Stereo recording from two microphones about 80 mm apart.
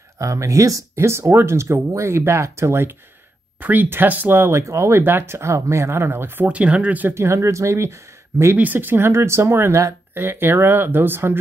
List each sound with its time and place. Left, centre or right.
0.2 s speech: right
3.6 s speech: right
6.4 s speech: centre
7.2 s speech: right
8.5 s speech: right